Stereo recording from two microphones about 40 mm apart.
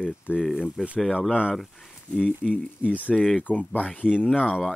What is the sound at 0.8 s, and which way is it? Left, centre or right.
Speech, right.